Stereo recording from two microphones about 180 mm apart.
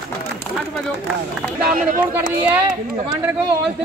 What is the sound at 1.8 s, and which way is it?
Speech, 50° right (ahead or behind).